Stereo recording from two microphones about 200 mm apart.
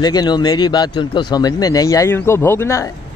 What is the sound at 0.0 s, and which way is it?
Speech, 20° left (ahead or behind).